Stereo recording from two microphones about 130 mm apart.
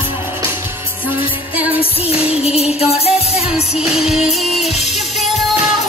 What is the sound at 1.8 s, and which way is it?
Music, 50° left (ahead or behind).